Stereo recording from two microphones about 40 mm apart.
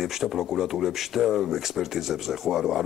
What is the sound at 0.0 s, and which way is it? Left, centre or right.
A man's voice, centre.